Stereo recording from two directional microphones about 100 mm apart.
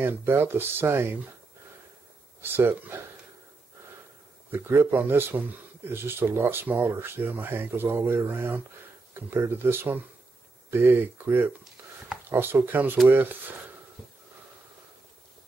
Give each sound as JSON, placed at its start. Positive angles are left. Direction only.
{"t": 0.0, "sound": "speech", "side_deg": -25}
{"t": 2.4, "sound": "speech", "side_deg": -20}
{"t": 4.5, "sound": "speech", "side_deg": -20}